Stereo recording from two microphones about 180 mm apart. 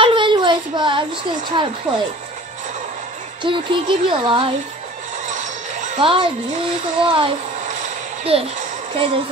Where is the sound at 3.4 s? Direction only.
25° right (ahead or behind).